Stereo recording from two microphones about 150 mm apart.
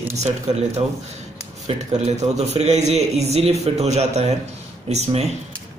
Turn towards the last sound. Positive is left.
turn(degrees=-45)  # may be behind; listen again after turning